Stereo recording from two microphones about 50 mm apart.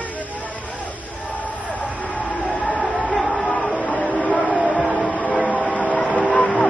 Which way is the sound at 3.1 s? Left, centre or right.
Left.